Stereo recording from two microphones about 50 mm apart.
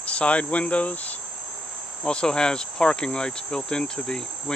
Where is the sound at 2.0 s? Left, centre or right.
Centre.